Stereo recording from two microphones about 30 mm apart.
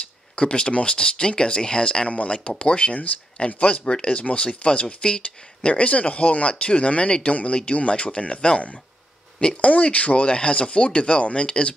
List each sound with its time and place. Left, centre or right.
0.4 s speech: left
2.0 s speech: left
3.8 s speech: left
4.1 s speech: left